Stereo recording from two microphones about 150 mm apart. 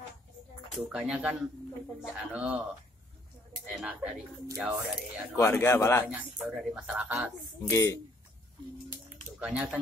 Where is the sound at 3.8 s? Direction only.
5° right (ahead or behind).